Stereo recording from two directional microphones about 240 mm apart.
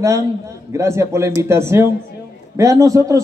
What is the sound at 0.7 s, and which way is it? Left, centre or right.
A man's voice, centre.